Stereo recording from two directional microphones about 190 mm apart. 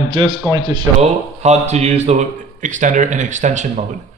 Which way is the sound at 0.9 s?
35° right (ahead or behind).